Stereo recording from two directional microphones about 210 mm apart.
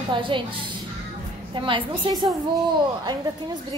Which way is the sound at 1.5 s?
25° right (ahead or behind).